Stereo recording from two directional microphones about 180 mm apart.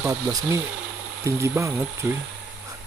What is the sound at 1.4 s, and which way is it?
Speech, 15° right (ahead or behind).